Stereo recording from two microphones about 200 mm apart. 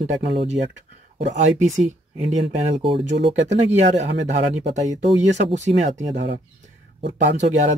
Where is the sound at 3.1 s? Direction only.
60° right (ahead or behind).